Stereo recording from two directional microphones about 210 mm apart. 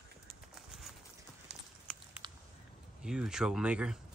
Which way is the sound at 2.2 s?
20° right (ahead or behind).